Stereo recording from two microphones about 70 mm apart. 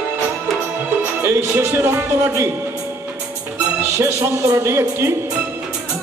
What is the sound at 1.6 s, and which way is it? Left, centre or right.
Speech, right.